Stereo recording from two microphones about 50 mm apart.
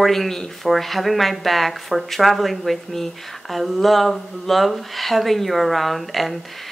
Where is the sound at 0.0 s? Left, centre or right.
Centre.